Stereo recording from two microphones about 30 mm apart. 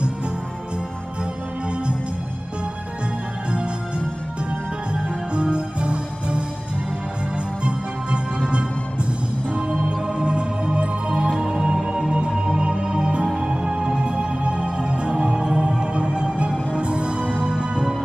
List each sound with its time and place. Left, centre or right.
4.5 s music: right
11.2 s music: right